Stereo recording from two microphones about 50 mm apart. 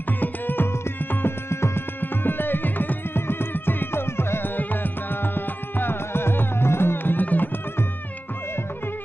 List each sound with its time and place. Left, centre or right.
0.2 s music: left
1.2 s music: left
2.0 s music: left
5.2 s music: left